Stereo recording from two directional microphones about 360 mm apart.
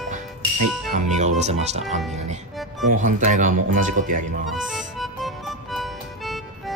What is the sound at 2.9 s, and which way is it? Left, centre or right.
Speech, right.